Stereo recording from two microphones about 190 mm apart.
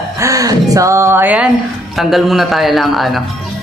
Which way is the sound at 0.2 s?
15° right (ahead or behind).